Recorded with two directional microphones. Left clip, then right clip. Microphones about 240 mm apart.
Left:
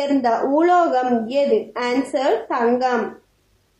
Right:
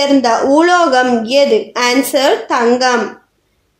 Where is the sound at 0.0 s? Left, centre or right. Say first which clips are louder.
Right 7 dB; right.